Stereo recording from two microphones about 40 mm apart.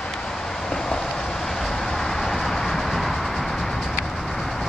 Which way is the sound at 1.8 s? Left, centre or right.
Centre.